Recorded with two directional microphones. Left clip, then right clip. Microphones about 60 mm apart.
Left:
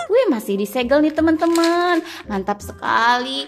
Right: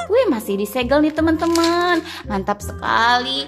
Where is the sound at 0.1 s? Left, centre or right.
Left.